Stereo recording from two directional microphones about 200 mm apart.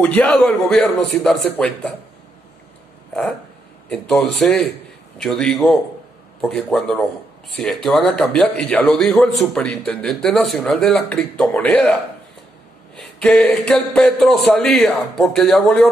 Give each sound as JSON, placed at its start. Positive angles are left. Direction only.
{"t": 0.0, "sound": "speech", "side_deg": 5}
{"t": 3.9, "sound": "speech", "side_deg": 5}
{"t": 12.9, "sound": "speech", "side_deg": 5}